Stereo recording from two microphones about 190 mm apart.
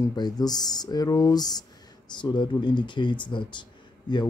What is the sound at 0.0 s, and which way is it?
Speech, 20° left (ahead or behind).